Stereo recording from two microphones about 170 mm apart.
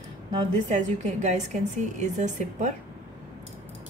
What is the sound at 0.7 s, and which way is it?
A woman's voice, 45° right (ahead or behind).